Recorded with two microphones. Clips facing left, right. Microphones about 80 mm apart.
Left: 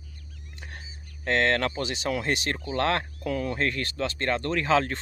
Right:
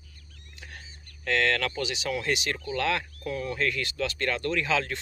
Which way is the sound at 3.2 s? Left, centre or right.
Left.